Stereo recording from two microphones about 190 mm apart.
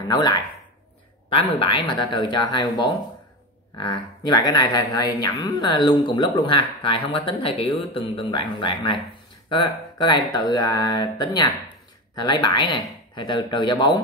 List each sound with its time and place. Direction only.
0.1 s speech: 20° left (ahead or behind)